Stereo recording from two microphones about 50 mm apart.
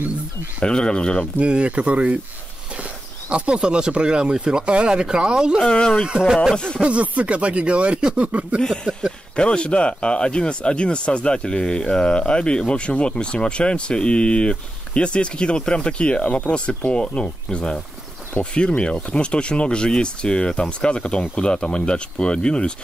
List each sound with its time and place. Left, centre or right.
0.6 s speech: centre
1.4 s speech: right
5.7 s speech: centre
6.0 s speech: centre
6.5 s speech: centre
6.8 s speech: right
8.5 s a sound: centre
9.3 s speech: centre